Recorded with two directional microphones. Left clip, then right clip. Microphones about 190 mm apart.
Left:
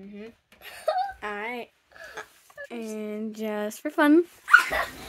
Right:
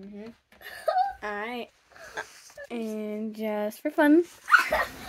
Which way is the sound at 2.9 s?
10° left (ahead or behind).